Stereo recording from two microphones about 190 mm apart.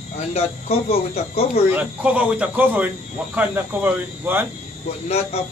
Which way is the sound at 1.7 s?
5° right (ahead or behind).